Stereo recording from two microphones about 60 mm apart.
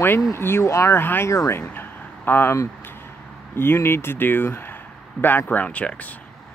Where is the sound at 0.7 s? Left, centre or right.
Left.